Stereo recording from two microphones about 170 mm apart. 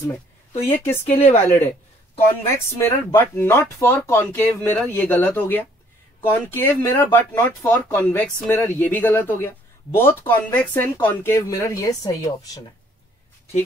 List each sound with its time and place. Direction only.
0.7 s speech: 15° left (ahead or behind)
1.0 s speech: 40° left (ahead or behind)
1.5 s speech: 15° left (ahead or behind)